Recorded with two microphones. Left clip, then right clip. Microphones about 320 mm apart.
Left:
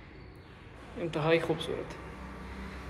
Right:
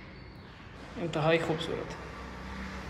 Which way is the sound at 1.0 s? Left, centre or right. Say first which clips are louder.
Even; centre.